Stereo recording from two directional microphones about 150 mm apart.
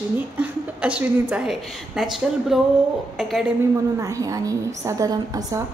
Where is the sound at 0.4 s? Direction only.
10° right (ahead or behind).